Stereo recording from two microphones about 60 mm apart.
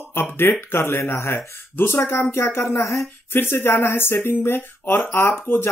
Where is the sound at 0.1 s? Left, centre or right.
Left.